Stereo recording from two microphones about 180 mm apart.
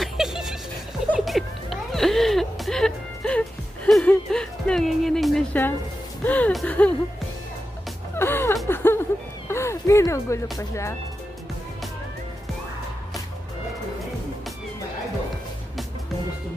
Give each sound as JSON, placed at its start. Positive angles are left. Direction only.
{"t": 0.0, "sound": "a sound", "side_deg": 0}
{"t": 1.1, "sound": "music", "side_deg": 0}
{"t": 8.2, "sound": "music", "side_deg": 15}
{"t": 8.6, "sound": "chuckle", "side_deg": 15}
{"t": 9.5, "sound": "music", "side_deg": 15}